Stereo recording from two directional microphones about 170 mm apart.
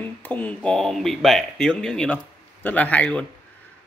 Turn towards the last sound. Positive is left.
turn(degrees=10)  # may be behind; listen again after turning